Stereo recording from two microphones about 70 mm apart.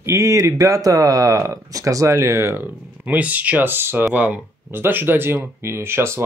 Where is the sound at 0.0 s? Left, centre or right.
Right.